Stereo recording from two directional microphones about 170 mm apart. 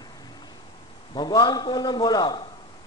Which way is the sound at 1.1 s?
25° left (ahead or behind).